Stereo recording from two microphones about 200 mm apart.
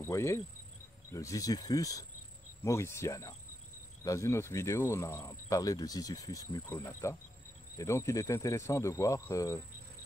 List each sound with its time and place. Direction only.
0.0 s speech: 15° left (ahead or behind)